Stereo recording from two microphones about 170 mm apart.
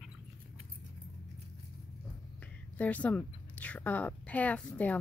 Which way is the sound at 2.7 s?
10° left (ahead or behind).